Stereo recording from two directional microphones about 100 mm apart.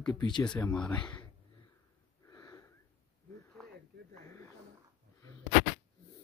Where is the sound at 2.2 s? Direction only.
40° left (ahead or behind).